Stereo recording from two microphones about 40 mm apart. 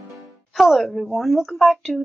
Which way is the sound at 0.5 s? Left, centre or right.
Centre.